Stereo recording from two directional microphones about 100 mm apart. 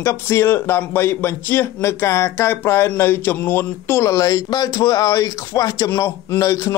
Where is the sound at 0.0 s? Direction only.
25° left (ahead or behind).